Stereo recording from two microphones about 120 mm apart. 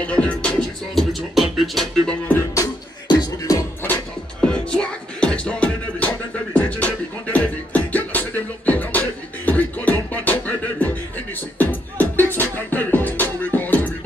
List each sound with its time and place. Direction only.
0.0 s music: 10° left (ahead or behind)
2.5 s beatboxing: 30° left (ahead or behind)
3.8 s music: 10° left (ahead or behind)
6.5 s beatboxing: 10° left (ahead or behind)